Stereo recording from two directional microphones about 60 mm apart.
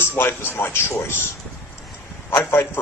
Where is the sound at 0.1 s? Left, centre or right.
Left.